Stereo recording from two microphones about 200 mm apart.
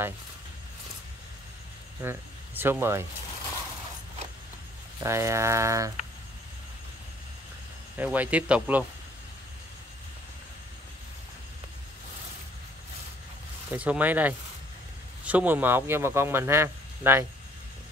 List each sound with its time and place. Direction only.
2.0 s speech: 10° right (ahead or behind)
5.0 s speech: 15° right (ahead or behind)
8.0 s speech: 10° right (ahead or behind)
13.7 s speech: 10° right (ahead or behind)